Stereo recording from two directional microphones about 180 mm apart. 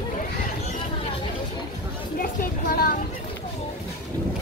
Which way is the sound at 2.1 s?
55° left (ahead or behind).